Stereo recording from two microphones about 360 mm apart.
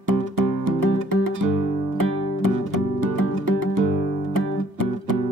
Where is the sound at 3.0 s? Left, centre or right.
Right.